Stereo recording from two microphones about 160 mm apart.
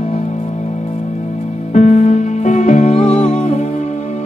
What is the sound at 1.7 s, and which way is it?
Music, 50° left (ahead or behind).